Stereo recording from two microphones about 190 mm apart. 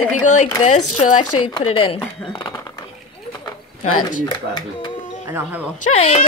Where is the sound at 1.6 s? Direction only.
30° left (ahead or behind).